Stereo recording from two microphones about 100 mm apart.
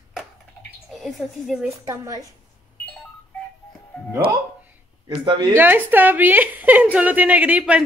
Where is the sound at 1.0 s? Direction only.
5° right (ahead or behind).